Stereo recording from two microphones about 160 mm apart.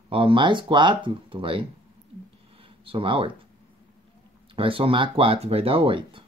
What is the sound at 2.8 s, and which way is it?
Speech, 35° right (ahead or behind).